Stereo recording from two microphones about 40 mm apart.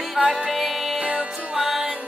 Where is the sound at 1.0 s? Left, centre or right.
Right.